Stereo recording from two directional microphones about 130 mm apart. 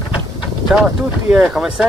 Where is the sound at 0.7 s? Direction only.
5° right (ahead or behind).